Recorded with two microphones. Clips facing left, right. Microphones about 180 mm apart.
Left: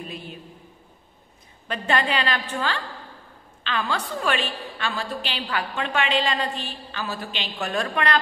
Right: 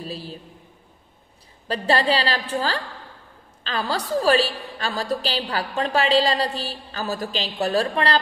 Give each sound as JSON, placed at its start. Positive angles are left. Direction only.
{"t": 0.0, "sound": "a woman's voice", "side_deg": -35}
{"t": 1.7, "sound": "a woman's voice", "side_deg": -35}